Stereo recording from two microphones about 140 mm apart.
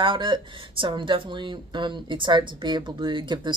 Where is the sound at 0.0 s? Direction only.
35° right (ahead or behind).